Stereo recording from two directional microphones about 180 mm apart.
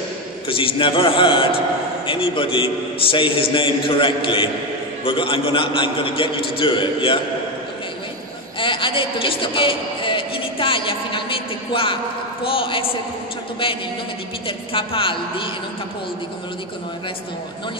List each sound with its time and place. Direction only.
0.5 s a man's voice: 30° left (ahead or behind)
8.5 s a woman's voice: 30° left (ahead or behind)
14.7 s a man's voice: 30° left (ahead or behind)